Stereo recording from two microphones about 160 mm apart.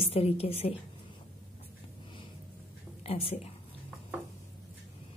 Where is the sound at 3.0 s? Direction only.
40° left (ahead or behind).